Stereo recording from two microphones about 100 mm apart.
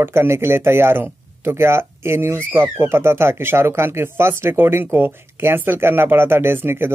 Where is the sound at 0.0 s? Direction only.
25° right (ahead or behind).